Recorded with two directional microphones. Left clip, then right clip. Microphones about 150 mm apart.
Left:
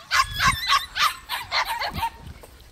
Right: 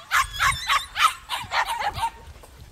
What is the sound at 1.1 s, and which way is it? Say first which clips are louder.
Dog: even; 10° left (ahead or behind).